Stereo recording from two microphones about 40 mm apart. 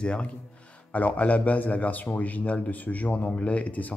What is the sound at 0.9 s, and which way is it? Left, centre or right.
A man's voice, left.